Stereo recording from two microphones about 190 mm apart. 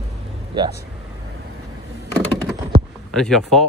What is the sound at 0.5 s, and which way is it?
Speech, 25° right (ahead or behind).